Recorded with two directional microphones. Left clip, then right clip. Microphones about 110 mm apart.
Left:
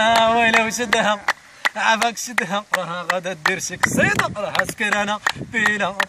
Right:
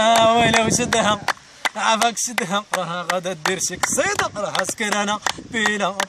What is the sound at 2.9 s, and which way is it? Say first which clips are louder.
Speech: even; 30° right (ahead or behind).